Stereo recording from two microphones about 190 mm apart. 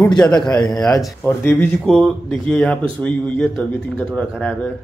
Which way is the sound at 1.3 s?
10° left (ahead or behind).